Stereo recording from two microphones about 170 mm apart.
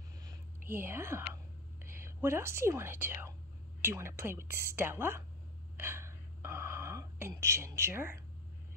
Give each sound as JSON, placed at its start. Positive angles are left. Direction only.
{"t": 0.2, "sound": "whispering", "side_deg": -15}
{"t": 1.9, "sound": "a woman's voice", "side_deg": -15}
{"t": 5.8, "sound": "a sound", "side_deg": -15}